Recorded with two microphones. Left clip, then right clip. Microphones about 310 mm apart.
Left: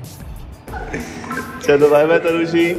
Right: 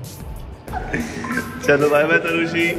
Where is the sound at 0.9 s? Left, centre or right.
Centre.